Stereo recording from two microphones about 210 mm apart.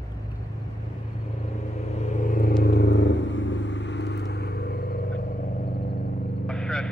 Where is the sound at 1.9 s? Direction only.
35° left (ahead or behind).